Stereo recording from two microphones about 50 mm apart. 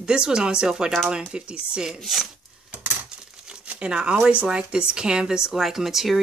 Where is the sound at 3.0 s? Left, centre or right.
Centre.